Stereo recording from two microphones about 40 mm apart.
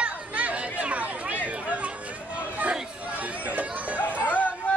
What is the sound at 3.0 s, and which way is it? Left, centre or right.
Chatter, right.